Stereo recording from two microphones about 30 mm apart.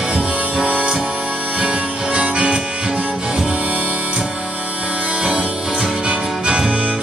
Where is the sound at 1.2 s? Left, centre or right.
Right.